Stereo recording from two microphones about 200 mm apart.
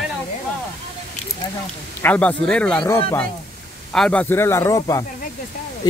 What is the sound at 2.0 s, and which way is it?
Speech, 5° left (ahead or behind).